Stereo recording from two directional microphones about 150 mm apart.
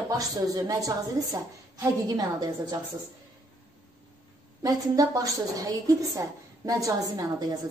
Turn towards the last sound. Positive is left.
turn(degrees=-25)  # may be behind; listen again after turning